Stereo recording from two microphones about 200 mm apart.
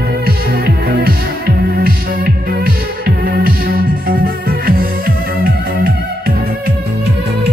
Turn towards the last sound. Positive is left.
turn(degrees=-55)  # may be behind; listen again after turning